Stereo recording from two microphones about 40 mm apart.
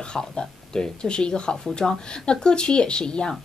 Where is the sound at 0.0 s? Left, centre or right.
Centre.